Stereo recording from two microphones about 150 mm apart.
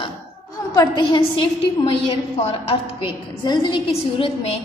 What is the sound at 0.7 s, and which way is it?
Speech, 30° left (ahead or behind).